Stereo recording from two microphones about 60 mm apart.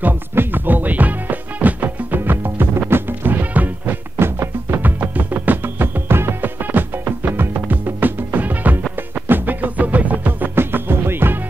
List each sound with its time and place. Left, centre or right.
0.0 s music: right
10.5 s music: right